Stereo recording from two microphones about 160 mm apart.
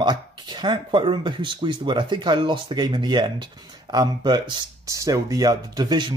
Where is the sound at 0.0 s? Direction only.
30° right (ahead or behind).